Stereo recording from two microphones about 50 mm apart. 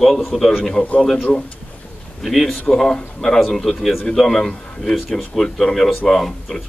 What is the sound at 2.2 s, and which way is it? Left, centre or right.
A man's voice, centre.